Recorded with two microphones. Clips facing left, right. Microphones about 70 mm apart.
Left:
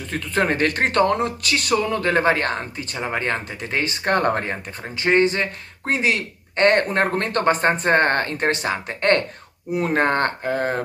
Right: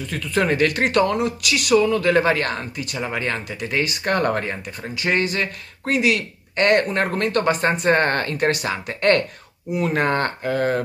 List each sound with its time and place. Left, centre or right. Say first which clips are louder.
0.1 s speech: even; left